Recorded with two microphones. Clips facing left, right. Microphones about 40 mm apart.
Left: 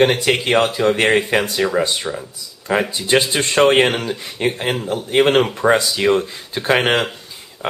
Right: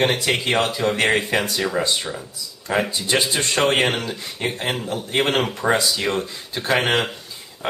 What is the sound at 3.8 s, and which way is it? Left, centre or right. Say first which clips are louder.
Speech: left 5 dB; centre.